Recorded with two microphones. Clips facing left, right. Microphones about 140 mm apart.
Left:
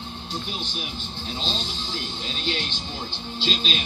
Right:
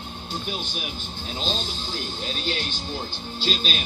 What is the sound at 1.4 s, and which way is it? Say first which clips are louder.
A man's voice: right 3 dB; 45° right (ahead or behind).